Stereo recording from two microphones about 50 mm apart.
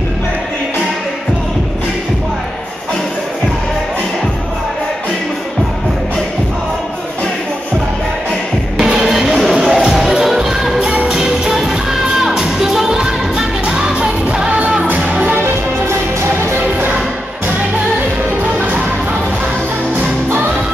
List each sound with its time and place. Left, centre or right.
8.7 s music: centre
9.6 s music: centre
10.8 s music: right
11.1 s music: centre
15.3 s music: right